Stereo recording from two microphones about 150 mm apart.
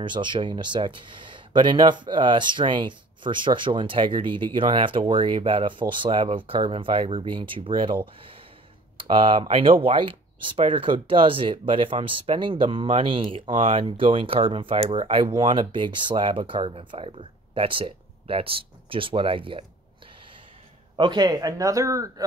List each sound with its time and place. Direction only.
0.0 s speech: 30° right (ahead or behind)
21.0 s speech: 30° right (ahead or behind)